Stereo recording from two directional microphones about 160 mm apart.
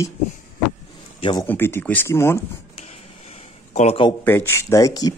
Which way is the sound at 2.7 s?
40° left (ahead or behind).